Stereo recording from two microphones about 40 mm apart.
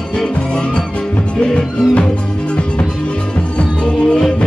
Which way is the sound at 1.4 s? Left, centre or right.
Left.